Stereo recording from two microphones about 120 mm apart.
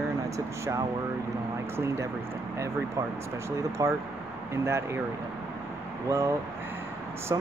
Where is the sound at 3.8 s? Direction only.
30° right (ahead or behind).